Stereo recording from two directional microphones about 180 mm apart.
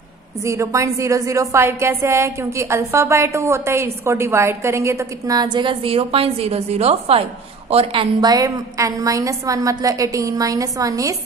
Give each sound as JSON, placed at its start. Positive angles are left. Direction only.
{"t": 0.4, "sound": "a woman's voice", "side_deg": -15}